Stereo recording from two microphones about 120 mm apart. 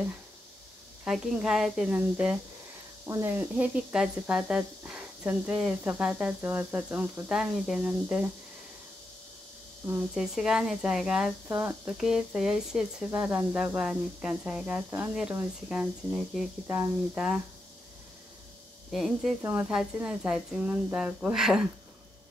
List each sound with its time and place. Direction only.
1.0 s speech: 5° right (ahead or behind)
9.8 s speech: 15° right (ahead or behind)
12.0 s speech: 5° right (ahead or behind)
18.9 s speech: centre (ahead or behind)